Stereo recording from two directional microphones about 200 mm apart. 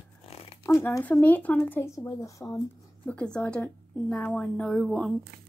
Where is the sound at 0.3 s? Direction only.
30° left (ahead or behind).